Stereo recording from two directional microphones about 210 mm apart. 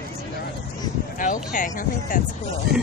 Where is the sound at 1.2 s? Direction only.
40° left (ahead or behind).